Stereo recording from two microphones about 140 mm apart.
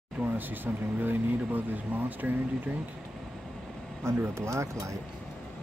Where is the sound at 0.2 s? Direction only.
15° right (ahead or behind).